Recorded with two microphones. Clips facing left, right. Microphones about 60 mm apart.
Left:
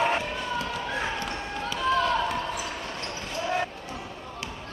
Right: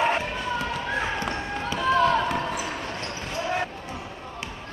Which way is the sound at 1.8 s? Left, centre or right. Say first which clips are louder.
Right 3 dB; centre.